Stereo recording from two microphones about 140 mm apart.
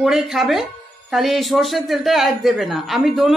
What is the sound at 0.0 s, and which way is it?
A man's voice, 5° right (ahead or behind).